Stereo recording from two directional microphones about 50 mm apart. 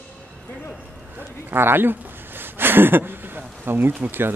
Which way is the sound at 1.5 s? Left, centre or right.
Right.